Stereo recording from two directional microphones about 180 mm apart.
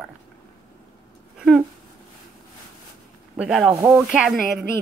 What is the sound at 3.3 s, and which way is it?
Speech, 5° right (ahead or behind).